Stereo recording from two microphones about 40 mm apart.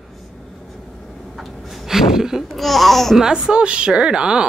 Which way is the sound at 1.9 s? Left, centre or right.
Centre.